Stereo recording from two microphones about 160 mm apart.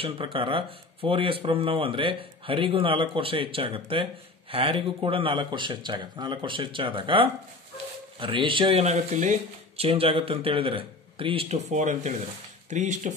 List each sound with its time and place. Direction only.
0.0 s speech: 30° right (ahead or behind); by 13.1 s 50° right (ahead or behind)